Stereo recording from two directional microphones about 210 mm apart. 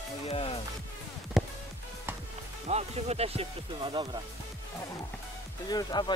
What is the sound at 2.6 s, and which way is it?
Speech, 30° right (ahead or behind).